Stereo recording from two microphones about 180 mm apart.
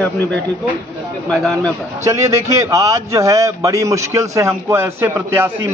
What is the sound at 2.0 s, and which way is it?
A man's voice, 15° right (ahead or behind).